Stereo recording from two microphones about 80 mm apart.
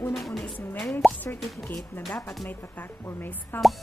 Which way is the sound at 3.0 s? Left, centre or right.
Left.